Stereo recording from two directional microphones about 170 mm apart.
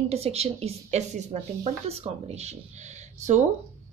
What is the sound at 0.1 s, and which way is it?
A woman's voice, 35° right (ahead or behind).